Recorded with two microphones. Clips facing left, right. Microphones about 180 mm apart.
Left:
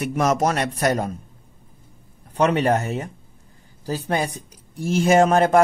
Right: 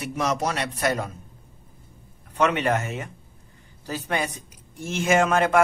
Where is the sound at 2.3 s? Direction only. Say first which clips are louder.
Left 4 dB; 35° left (ahead or behind).